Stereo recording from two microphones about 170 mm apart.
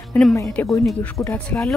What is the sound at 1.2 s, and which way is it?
Speech, 15° left (ahead or behind).